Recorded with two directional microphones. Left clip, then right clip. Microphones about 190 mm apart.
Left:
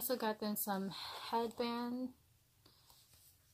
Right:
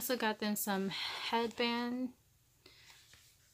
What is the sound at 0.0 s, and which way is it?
Speech, 10° right (ahead or behind).